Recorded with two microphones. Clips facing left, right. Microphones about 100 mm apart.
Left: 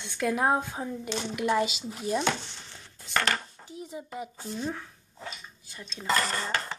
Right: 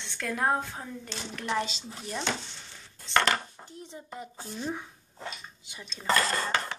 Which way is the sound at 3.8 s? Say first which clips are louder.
Left 5 dB; 5° left (ahead or behind).